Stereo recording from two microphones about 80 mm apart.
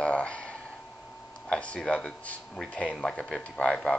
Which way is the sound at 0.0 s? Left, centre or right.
Centre.